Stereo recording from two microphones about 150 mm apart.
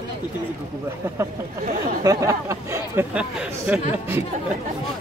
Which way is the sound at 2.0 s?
20° right (ahead or behind).